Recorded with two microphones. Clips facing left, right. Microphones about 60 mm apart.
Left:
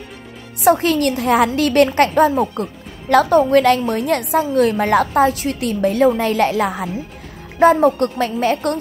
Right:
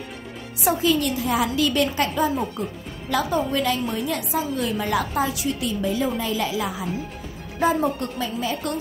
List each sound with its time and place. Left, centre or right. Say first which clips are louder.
0.7 s a woman's voice: left 7 dB; left